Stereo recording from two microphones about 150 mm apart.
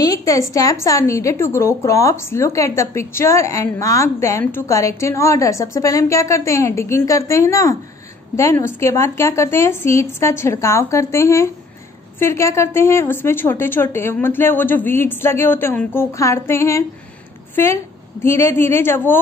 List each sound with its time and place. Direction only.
0.0 s a woman's voice: 25° left (ahead or behind)
18.2 s speech: 15° left (ahead or behind)